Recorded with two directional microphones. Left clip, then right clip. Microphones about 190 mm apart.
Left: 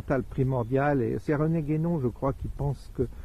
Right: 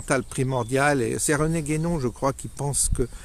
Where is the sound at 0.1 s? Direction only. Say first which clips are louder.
Right 4 dB; 15° right (ahead or behind).